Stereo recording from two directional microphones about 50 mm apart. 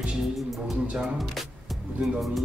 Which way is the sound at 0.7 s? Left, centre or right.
Centre.